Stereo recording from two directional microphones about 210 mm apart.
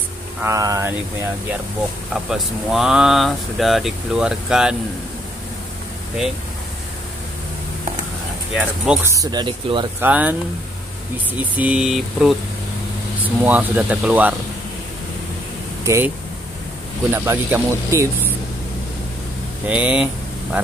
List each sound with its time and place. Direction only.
0.4 s speech: 15° right (ahead or behind)
2.1 s speech: centre (ahead or behind)
8.5 s speech: 5° right (ahead or behind)
9.1 s speech: 20° right (ahead or behind)
9.9 s speech: 10° right (ahead or behind)
11.5 s speech: 5° right (ahead or behind)
15.8 s speech: 15° right (ahead or behind)
17.1 s speech: 10° right (ahead or behind)
19.6 s speech: 5° right (ahead or behind)